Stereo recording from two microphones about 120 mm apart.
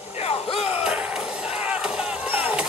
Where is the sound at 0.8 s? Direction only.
10° right (ahead or behind).